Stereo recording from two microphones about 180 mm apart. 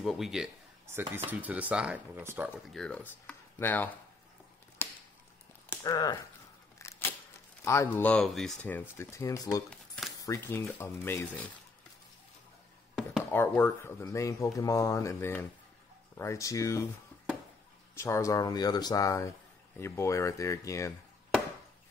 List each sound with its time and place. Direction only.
0.0 s speech: centre (ahead or behind)
2.7 s speech: 5° left (ahead or behind)
4.8 s a sound: 15° left (ahead or behind)
6.8 s camera: 15° left (ahead or behind)
7.6 s speech: 15° left (ahead or behind)
9.7 s a sound: centre (ahead or behind)
10.2 s speech: 15° left (ahead or behind)
12.9 s speech: 5° left (ahead or behind)
17.9 s speech: 15° left (ahead or behind)